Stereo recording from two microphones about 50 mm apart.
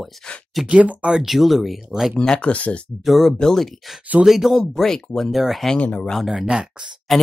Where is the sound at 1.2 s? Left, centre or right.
Centre.